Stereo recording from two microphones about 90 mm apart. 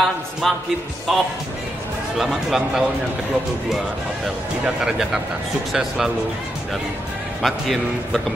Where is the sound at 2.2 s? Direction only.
5° right (ahead or behind).